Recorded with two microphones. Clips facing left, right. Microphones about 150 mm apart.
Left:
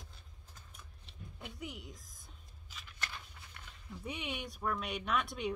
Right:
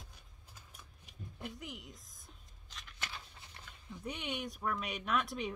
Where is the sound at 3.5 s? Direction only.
20° right (ahead or behind).